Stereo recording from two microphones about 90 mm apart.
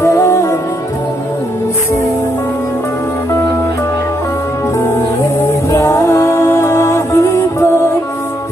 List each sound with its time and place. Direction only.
0.0 s music: 30° left (ahead or behind)
5.7 s music: 30° left (ahead or behind)